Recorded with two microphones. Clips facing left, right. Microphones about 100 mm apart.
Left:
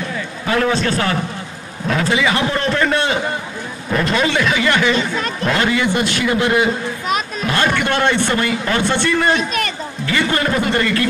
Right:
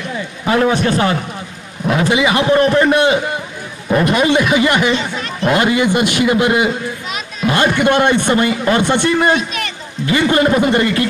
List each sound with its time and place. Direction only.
0.5 s a man's voice: 20° right (ahead or behind)